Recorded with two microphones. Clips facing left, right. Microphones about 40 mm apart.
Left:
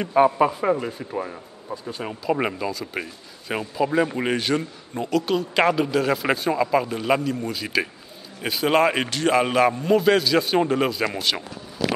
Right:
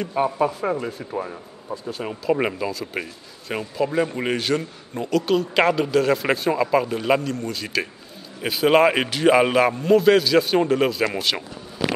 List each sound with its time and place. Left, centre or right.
0.0 s speech: left
0.7 s speech: centre
7.2 s a man's voice: centre
8.4 s speech: centre
11.8 s a sound: right